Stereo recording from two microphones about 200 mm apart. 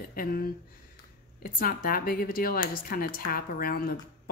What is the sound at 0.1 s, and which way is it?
Speech, 45° left (ahead or behind).